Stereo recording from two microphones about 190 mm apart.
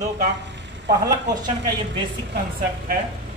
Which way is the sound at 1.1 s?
20° right (ahead or behind).